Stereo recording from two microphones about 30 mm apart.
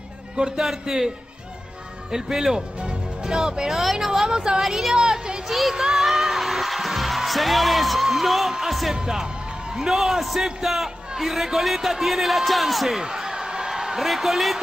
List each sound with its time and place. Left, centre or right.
0.6 s a man's voice: centre
3.8 s a man's voice: centre
4.3 s speech: right
4.6 s a man's voice: centre
5.0 s music: right
5.5 s music: centre
8.9 s speech: right
9.8 s a man's voice: centre
13.0 s a sound: centre
14.0 s a man's voice: centre